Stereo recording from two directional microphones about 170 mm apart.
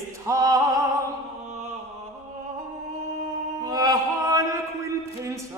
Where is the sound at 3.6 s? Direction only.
20° right (ahead or behind).